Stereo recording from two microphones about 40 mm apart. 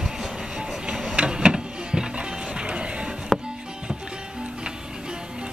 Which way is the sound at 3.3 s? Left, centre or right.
Centre.